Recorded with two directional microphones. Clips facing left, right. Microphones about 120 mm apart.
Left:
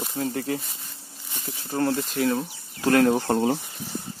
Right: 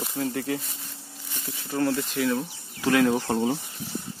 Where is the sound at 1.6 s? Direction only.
35° left (ahead or behind).